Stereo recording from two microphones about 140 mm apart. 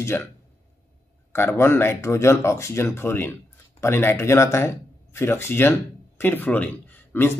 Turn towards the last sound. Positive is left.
turn(degrees=15)  # may be behind; listen again after turning